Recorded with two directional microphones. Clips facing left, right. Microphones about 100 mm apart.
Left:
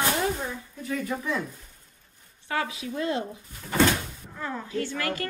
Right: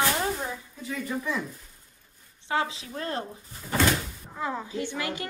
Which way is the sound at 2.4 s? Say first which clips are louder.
Right 1 dB; 25° right (ahead or behind).